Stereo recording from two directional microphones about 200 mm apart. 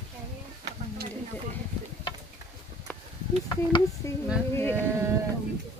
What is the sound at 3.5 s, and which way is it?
Speech, 15° left (ahead or behind).